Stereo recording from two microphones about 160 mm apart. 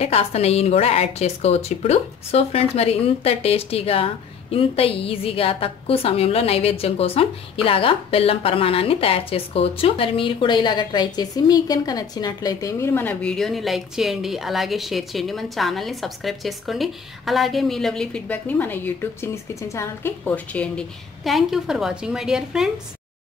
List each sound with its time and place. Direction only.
0.0 s a woman's voice: 40° left (ahead or behind); by 22.7 s 5° right (ahead or behind)